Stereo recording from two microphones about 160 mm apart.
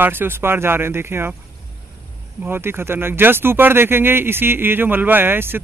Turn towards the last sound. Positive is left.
turn(degrees=-15)  # may be behind; listen again after turning